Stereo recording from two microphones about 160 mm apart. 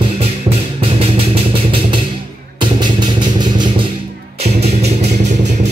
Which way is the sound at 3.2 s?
30° right (ahead or behind).